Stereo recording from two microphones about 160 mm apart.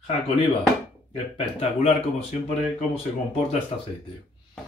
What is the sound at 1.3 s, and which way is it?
Speech, 40° left (ahead or behind).